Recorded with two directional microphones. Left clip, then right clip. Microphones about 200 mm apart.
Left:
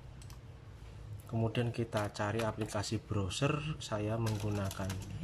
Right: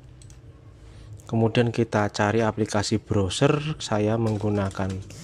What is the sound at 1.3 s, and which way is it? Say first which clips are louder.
Speech: right 14 dB; 45° right (ahead or behind).